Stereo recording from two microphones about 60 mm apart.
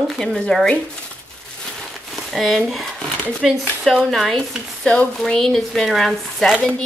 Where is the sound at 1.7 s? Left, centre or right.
Centre.